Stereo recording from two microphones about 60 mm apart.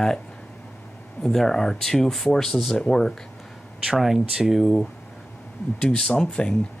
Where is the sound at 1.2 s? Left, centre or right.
Centre.